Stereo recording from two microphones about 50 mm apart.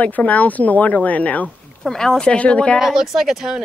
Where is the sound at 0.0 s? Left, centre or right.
Left.